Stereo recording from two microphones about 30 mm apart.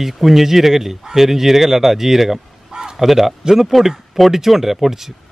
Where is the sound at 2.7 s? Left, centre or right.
Right.